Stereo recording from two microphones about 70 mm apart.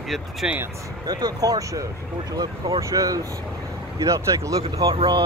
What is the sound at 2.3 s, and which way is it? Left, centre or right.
Speech, right.